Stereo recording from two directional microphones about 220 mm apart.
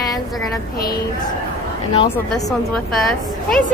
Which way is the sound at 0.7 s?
45° left (ahead or behind).